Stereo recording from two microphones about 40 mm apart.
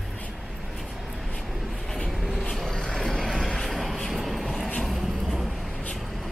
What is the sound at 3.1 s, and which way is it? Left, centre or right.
Vehicle, centre.